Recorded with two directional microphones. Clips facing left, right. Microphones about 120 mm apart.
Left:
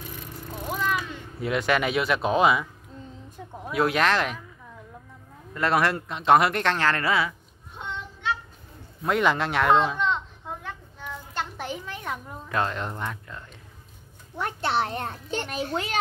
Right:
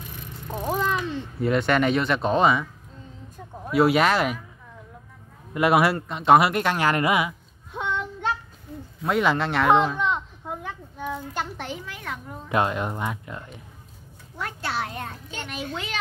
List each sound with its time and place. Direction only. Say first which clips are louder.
0.7 s a sound: right 3 dB; 30° right (ahead or behind)
1.4 s speech: right 3 dB; centre (ahead or behind)
3.7 s speech: right 4 dB; 5° right (ahead or behind)
5.5 s speech: right 4 dB; 10° right (ahead or behind)
5.9 s speech: right 2 dB; centre (ahead or behind); by 7.3 s 15° right (ahead or behind)
7.7 s child singing: right 8 dB; 90° right
9.0 s a sound: right 1 dB; centre (ahead or behind)
11.5 s a sound: left 1 dB; 15° left (ahead or behind)
12.4 s speech: right 4 dB; 15° right (ahead or behind)
14.3 s a child's voice: left 4 dB; 25° left (ahead or behind); by 16.0 s 40° left (ahead or behind)